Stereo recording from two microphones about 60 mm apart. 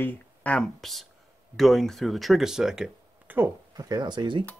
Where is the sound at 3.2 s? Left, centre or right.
Right.